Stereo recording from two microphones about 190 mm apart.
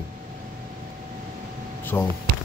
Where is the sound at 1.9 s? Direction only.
10° left (ahead or behind).